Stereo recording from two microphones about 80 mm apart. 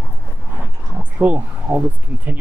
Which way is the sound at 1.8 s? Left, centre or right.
Right.